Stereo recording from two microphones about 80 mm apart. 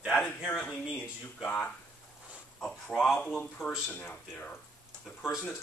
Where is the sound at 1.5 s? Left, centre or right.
Centre.